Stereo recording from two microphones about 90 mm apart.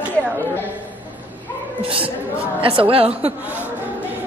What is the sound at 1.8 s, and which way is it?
A woman's voice, 80° right.